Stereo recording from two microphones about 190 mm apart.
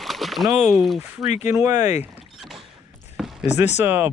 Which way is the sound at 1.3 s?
35° left (ahead or behind).